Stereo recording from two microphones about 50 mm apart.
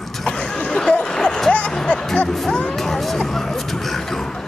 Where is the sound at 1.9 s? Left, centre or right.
Left.